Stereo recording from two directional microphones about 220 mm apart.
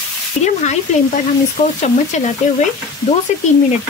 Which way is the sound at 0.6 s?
30° left (ahead or behind).